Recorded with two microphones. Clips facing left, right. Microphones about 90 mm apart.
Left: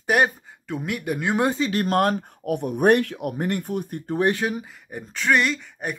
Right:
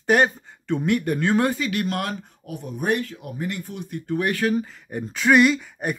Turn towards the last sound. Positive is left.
turn(degrees=-5)  # may be behind; listen again after turning